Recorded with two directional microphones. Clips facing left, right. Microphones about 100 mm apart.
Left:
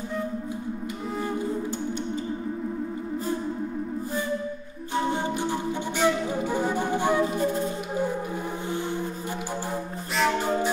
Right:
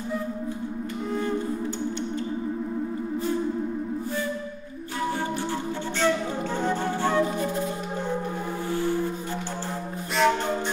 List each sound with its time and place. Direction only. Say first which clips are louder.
5.9 s flute: even; 10° left (ahead or behind)
8.6 s music: right 6 dB; 20° left (ahead or behind)
10.1 s music: right 1 dB; 5° left (ahead or behind)